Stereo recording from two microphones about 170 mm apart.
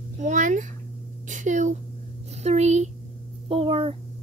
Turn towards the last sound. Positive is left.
turn(degrees=-30)  # may be behind; listen again after turning